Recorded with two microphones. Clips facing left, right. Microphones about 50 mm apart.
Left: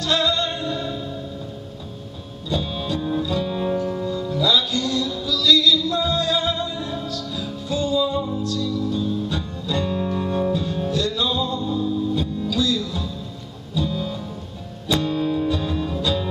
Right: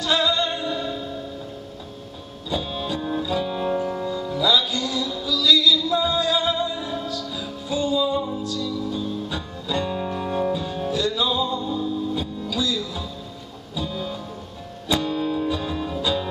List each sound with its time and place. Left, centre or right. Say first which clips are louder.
0.0 s music: even; centre
2.5 s music: left 1 dB; centre